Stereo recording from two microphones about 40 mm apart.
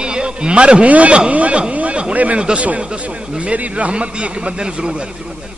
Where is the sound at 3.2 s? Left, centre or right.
Right.